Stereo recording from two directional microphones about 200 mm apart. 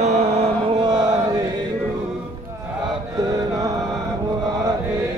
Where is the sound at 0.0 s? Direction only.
35° right (ahead or behind).